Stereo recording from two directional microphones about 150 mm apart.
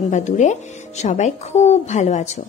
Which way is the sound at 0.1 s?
50° left (ahead or behind).